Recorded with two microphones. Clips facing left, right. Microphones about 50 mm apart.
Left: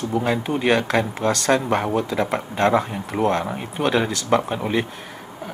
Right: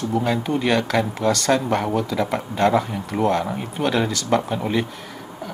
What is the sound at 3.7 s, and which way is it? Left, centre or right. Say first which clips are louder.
Speech: left 1 dB; centre.